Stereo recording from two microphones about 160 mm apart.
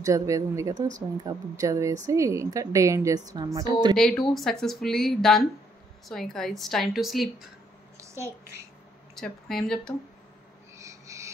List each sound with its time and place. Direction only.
0.0 s a woman's voice: 20° right (ahead or behind)
3.9 s speech: 5° left (ahead or behind)
8.0 s a sound: 15° right (ahead or behind)
9.1 s speech: 5° left (ahead or behind)
10.8 s owl: 20° right (ahead or behind)